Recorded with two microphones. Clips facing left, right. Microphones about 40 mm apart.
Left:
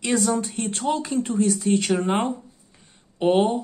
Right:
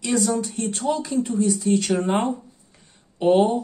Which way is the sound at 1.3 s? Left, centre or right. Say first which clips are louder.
Left 1 dB; left.